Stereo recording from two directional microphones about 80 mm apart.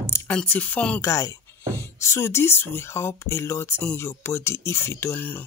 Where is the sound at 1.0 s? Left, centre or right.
Left.